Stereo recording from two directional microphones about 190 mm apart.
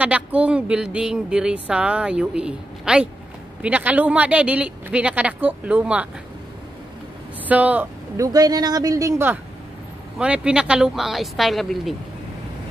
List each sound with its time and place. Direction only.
0.0 s a woman's voice: 5° right (ahead or behind)
7.4 s speech: 10° right (ahead or behind)
8.3 s a woman's voice: 20° right (ahead or behind); by 11.9 s centre (ahead or behind)